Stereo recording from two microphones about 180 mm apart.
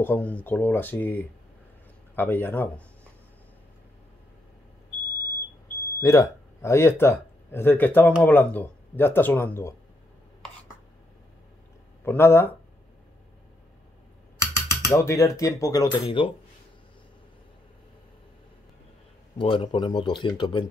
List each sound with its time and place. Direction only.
0.0 s speech: 10° left (ahead or behind)
5.9 s speech: 20° left (ahead or behind)
12.0 s speech: 15° left (ahead or behind)
14.4 s speech: 15° left (ahead or behind)
19.3 s speech: 30° left (ahead or behind)